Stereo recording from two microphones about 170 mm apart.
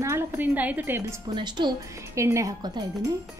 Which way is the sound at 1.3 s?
25° right (ahead or behind).